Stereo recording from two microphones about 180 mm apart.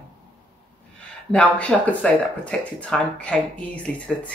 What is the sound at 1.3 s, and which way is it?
Speech, 5° left (ahead or behind).